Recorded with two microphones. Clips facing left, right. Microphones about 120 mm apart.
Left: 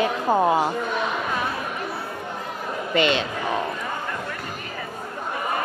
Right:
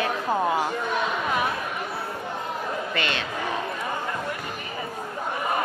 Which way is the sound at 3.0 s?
20° left (ahead or behind).